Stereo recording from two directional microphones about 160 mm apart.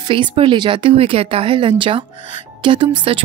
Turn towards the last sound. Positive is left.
turn(degrees=-30)  # may be behind; listen again after turning